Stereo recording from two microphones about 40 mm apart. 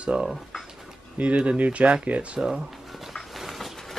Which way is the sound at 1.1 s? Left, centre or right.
Right.